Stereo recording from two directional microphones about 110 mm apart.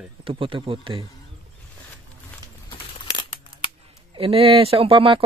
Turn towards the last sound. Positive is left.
turn(degrees=-55)  # may be behind; listen again after turning